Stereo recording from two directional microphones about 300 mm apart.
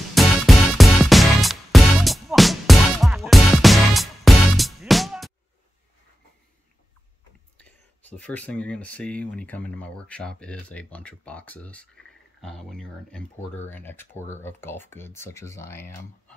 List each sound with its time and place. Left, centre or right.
0.1 s music: centre
7.5 s speech: centre